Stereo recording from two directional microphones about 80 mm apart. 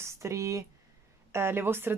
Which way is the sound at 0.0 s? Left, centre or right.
Right.